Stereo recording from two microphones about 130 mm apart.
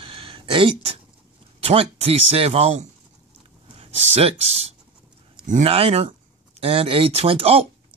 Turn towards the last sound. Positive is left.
turn(degrees=-50)  # may be behind; listen again after turning